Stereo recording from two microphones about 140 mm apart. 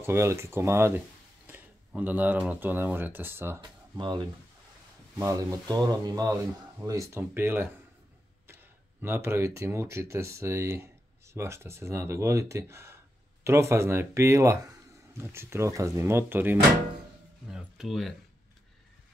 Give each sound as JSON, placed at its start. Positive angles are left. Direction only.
{"t": 0.0, "sound": "speech", "side_deg": -20}
{"t": 1.5, "sound": "a sound", "side_deg": -10}
{"t": 2.6, "sound": "speech", "side_deg": -15}
{"t": 3.9, "sound": "speech", "side_deg": -30}
{"t": 5.2, "sound": "speech", "side_deg": -25}
{"t": 9.0, "sound": "speech", "side_deg": -15}
{"t": 17.5, "sound": "speech", "side_deg": -5}